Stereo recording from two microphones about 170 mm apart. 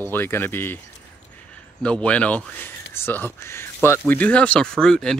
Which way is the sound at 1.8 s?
5° left (ahead or behind).